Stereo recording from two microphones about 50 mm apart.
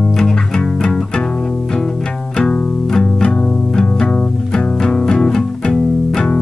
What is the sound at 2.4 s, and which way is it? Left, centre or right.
Music, centre.